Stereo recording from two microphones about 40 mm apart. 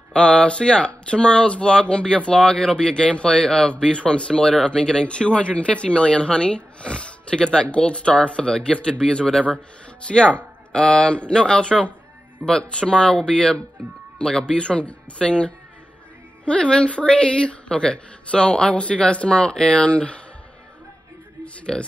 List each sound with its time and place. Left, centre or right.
0.1 s speech: left
21.7 s speech: centre